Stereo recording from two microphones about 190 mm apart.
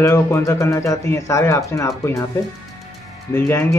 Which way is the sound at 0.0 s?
15° left (ahead or behind).